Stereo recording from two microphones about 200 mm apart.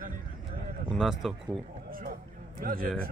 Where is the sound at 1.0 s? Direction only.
Centre (ahead or behind).